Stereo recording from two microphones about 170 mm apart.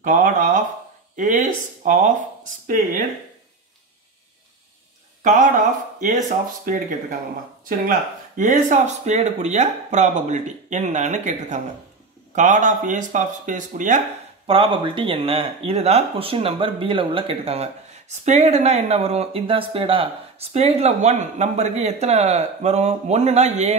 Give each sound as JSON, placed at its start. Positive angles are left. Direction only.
{"t": 0.0, "sound": "speech", "side_deg": -50}
{"t": 2.6, "sound": "speech", "side_deg": -55}
{"t": 5.2, "sound": "speech", "side_deg": -50}
{"t": 8.4, "sound": "speech", "side_deg": -45}
{"t": 14.4, "sound": "speech", "side_deg": -30}